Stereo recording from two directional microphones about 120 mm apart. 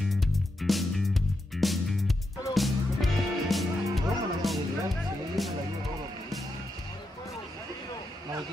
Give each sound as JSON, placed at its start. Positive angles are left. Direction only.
{"t": 0.1, "sound": "music", "side_deg": 0}